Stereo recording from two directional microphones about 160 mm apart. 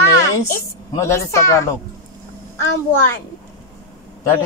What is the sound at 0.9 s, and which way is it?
Speech, 20° left (ahead or behind).